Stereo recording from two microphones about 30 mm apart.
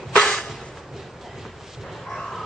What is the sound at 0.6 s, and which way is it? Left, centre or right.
Music, centre.